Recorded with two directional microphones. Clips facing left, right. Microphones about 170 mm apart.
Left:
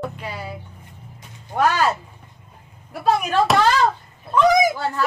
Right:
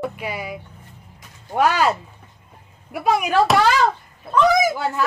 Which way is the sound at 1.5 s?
15° right (ahead or behind).